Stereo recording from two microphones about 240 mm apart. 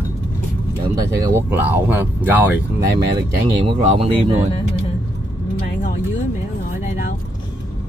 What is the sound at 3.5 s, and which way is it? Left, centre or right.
Speech, right.